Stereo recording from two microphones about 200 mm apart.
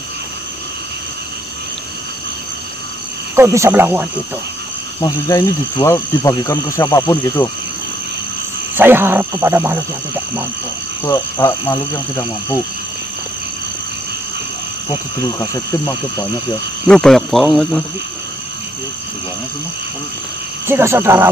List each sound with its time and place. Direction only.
3.3 s speech: 15° right (ahead or behind)
5.0 s speech: 20° left (ahead or behind)
8.7 s speech: 10° right (ahead or behind)
11.1 s speech: 15° left (ahead or behind)
14.9 s speech: 15° left (ahead or behind)
16.8 s speech: 5° left (ahead or behind)
20.6 s speech: 10° right (ahead or behind)